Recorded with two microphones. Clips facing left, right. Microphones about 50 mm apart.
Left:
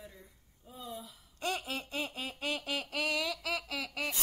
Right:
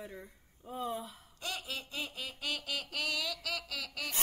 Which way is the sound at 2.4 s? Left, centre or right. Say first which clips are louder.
Left 2 dB; left.